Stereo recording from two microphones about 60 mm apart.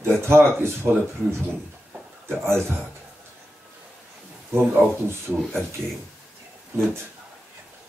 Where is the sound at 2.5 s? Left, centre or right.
Right.